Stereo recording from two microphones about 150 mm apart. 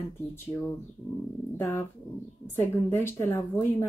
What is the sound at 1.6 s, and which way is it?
A woman's voice, 15° left (ahead or behind).